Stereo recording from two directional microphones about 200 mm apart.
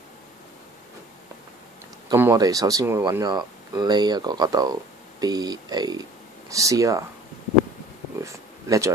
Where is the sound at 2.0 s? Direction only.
15° right (ahead or behind).